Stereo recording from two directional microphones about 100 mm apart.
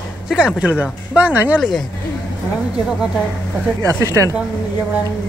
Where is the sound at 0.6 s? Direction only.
15° right (ahead or behind).